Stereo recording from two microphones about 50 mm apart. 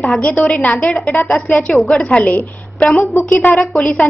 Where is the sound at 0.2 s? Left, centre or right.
Left.